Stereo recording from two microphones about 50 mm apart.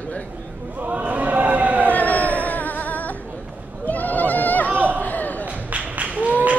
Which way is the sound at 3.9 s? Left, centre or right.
Left.